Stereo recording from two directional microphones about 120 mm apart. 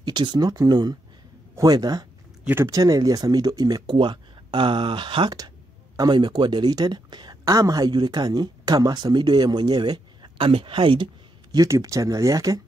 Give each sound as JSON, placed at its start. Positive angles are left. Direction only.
{"t": 0.0, "sound": "speech", "side_deg": -40}
{"t": 11.5, "sound": "speech", "side_deg": -30}